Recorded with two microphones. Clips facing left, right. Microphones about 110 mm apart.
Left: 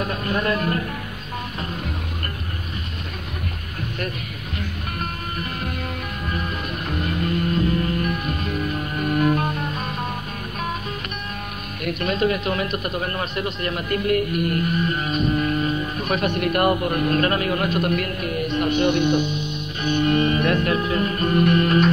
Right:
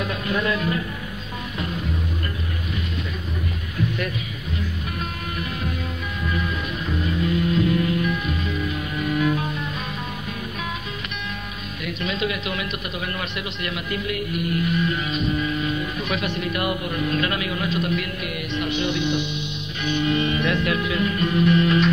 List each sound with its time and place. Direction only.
0.0 s music: 40° left (ahead or behind)
6.9 s music: 55° left (ahead or behind)
11.8 s speech: 50° left (ahead or behind)